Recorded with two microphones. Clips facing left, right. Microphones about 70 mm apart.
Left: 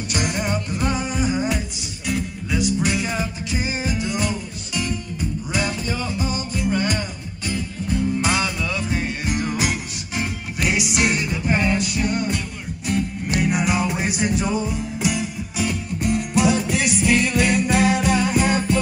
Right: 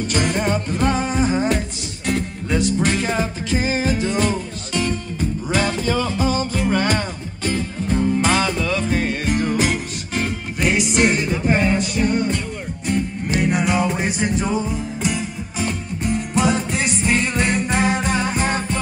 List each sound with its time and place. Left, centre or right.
0.1 s music: right
11.1 s music: centre
13.4 s music: centre